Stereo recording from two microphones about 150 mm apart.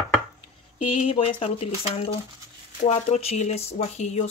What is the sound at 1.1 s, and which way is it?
Speech, 40° left (ahead or behind).